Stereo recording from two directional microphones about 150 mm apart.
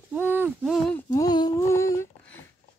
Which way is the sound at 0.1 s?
10° right (ahead or behind).